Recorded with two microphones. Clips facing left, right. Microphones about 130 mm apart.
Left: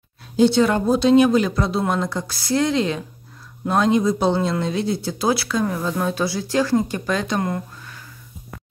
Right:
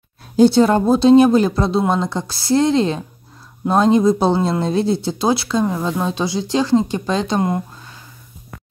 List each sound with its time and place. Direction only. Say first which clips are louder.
0.4 s speech: right 4 dB; 35° right (ahead or behind)